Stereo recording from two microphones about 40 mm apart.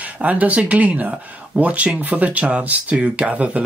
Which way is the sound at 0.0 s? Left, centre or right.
Right.